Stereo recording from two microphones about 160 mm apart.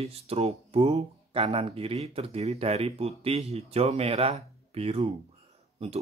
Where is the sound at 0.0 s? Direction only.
40° right (ahead or behind).